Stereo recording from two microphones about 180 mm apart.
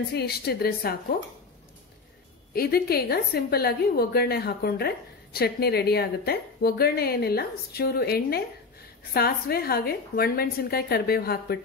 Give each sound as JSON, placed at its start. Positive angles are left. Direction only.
{"t": 0.1, "sound": "a woman's voice", "side_deg": 60}
{"t": 2.5, "sound": "a woman's voice", "side_deg": 60}